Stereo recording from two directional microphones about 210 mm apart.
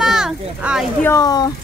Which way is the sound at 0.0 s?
Centre (ahead or behind).